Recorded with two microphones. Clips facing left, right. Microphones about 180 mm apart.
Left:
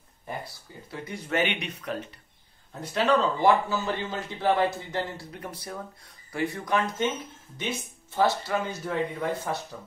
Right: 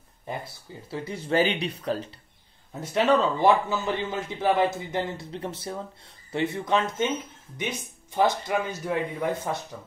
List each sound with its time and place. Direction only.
0.8 s a man's voice: 30° right (ahead or behind)